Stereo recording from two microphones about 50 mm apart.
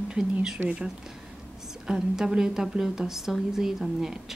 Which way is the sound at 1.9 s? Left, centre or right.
Centre.